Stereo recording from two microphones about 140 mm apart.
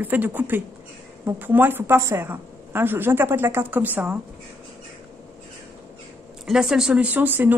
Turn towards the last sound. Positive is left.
turn(degrees=-15)  # may be behind; listen again after turning